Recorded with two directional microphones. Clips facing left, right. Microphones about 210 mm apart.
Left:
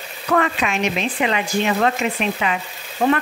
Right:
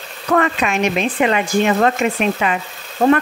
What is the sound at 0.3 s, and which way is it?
Speech, 45° right (ahead or behind).